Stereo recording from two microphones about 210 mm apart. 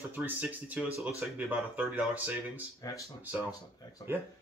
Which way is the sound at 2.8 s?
15° left (ahead or behind).